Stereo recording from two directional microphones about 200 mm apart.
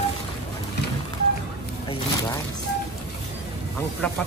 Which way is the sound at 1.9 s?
20° left (ahead or behind).